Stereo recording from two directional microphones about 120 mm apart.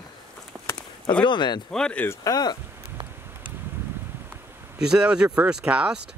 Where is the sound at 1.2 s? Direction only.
40° left (ahead or behind).